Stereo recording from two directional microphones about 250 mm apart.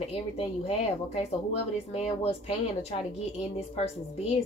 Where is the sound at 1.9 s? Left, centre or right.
Left.